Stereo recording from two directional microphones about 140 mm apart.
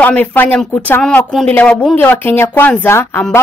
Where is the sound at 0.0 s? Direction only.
10° left (ahead or behind).